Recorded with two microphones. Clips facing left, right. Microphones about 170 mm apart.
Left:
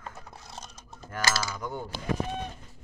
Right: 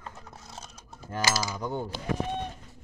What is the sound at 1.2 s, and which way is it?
Cutlery, 15° right (ahead or behind).